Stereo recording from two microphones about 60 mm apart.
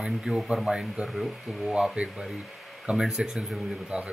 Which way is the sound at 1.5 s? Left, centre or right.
Centre.